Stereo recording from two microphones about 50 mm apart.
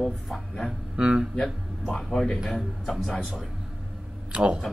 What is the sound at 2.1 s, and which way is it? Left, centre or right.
Speech, centre.